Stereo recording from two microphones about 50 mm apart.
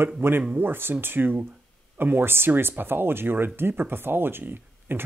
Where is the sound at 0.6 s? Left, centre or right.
Right.